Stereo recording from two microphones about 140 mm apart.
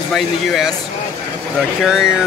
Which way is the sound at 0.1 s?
Centre (ahead or behind).